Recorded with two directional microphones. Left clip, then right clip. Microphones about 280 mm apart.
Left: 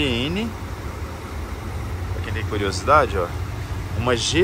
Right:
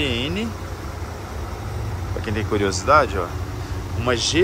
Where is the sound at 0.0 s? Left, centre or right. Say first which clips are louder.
Even; centre.